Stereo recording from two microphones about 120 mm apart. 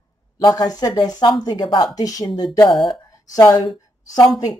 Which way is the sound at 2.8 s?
40° left (ahead or behind).